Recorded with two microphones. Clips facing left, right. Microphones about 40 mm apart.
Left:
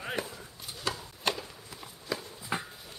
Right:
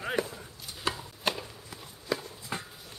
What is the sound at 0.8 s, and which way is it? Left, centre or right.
Chopping, centre.